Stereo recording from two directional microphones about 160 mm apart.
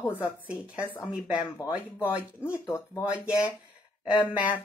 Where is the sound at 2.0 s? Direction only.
15° left (ahead or behind).